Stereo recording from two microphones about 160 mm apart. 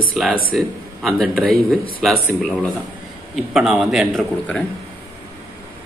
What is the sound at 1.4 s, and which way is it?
Speech, 65° right (ahead or behind).